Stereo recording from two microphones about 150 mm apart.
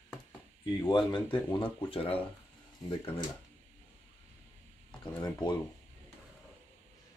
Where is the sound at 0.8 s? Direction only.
30° left (ahead or behind).